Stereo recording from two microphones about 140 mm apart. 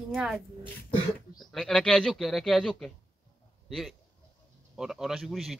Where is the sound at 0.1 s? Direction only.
5° right (ahead or behind).